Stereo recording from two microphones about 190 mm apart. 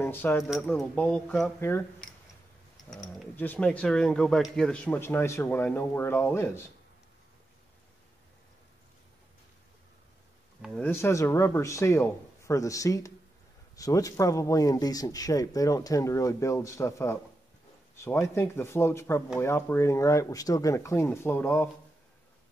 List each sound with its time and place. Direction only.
0.0 s speech: 10° left (ahead or behind)
3.3 s speech: 10° left (ahead or behind)
10.6 s speech: 5° left (ahead or behind)